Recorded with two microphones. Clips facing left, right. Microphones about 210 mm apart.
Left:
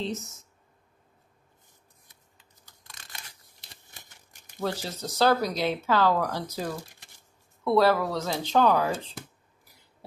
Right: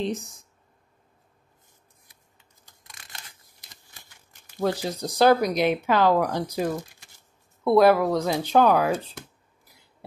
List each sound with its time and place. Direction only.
0.0 s speech: 15° right (ahead or behind)
3.6 s a sound: 20° left (ahead or behind)
4.6 s speech: 15° right (ahead or behind)